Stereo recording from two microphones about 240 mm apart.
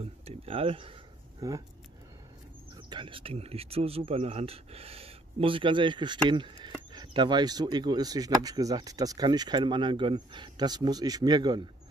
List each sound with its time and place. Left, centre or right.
0.0 s speech: right
2.7 s speech: centre